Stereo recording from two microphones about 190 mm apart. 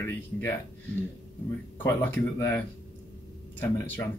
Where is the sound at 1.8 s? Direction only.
10° left (ahead or behind).